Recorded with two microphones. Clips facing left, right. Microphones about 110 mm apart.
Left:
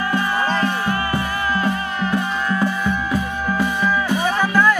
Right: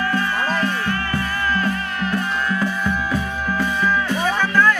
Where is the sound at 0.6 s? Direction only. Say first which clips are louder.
Left 2 dB; 10° left (ahead or behind).